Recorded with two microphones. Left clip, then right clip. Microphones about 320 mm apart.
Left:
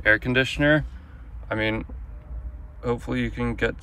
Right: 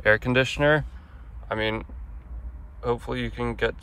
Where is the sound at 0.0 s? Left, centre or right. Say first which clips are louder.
Left 1 dB; centre.